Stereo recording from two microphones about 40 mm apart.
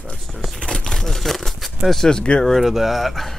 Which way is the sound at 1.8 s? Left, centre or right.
Right.